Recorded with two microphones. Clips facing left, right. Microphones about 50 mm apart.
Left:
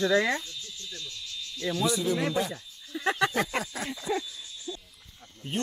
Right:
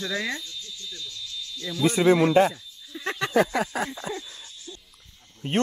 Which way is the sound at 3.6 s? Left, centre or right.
Right.